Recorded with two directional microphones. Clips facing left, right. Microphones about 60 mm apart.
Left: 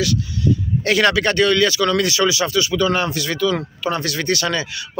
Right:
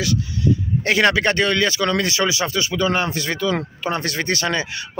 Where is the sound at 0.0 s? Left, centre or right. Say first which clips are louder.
Left 1 dB; right.